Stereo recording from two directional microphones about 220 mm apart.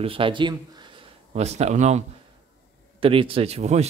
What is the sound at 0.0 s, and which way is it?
A man's voice, 25° right (ahead or behind).